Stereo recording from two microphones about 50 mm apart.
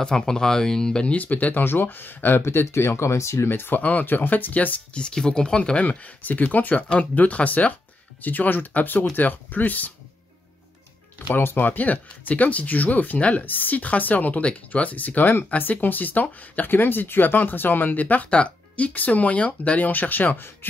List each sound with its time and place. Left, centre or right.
0.0 s speech: centre
1.0 s speech: left
1.6 s speech: left
2.4 s speech: left
3.4 s speech: left
3.7 s speech: left
5.0 s speech: centre; by 9.9 s left
11.3 s speech: left